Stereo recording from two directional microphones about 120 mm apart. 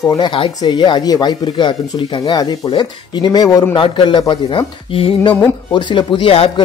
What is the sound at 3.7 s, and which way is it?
Speech, 40° left (ahead or behind).